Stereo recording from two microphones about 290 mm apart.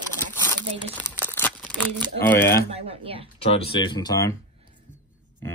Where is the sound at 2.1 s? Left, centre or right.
Centre.